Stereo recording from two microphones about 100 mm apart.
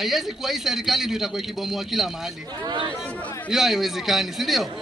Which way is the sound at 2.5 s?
50° right (ahead or behind).